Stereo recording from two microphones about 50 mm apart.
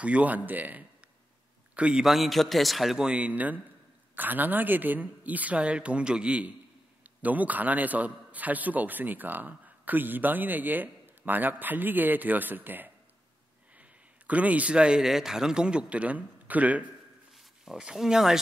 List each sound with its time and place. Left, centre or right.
0.0 s a man's voice: right
2.0 s a man's voice: centre
3.0 s a man's voice: right
13.7 s speech: right
17.9 s speech: centre